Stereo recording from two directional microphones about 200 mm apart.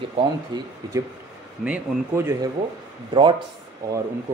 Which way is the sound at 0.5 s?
20° right (ahead or behind).